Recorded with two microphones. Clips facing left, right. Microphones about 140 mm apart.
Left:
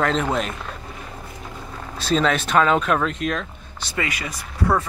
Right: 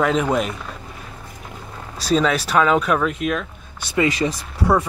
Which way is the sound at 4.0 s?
30° right (ahead or behind).